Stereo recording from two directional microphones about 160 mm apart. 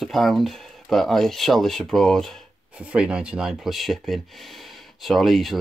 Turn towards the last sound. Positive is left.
turn(degrees=0)  # may be behind; listen again after turning